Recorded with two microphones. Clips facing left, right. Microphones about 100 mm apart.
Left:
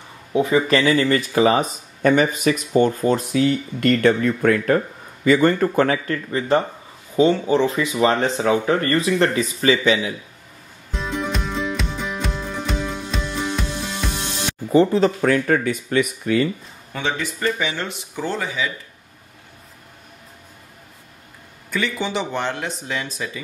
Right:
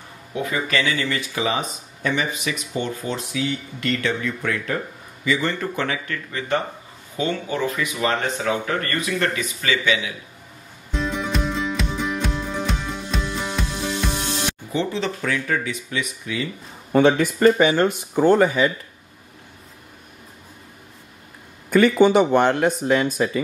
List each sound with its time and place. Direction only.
0.3 s speech: 25° left (ahead or behind)
10.9 s music: centre (ahead or behind)
14.7 s speech: 40° left (ahead or behind)
16.9 s speech: 50° right (ahead or behind)
21.6 s speech: 50° right (ahead or behind)